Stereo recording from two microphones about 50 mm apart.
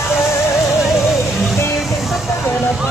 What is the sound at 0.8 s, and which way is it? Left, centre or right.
Music, centre.